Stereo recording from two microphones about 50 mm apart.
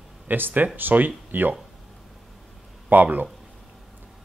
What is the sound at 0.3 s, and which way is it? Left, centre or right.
Speech, right.